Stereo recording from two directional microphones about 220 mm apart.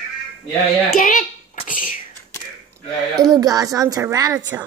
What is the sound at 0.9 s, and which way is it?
Speech, 40° left (ahead or behind).